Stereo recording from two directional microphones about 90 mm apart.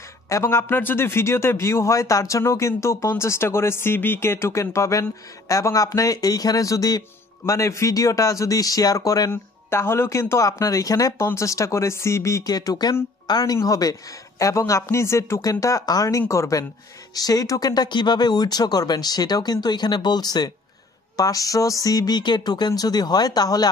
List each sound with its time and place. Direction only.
0.3 s speech: 30° left (ahead or behind)
9.3 s speech: 25° left (ahead or behind)
12.5 s speech: 50° left (ahead or behind)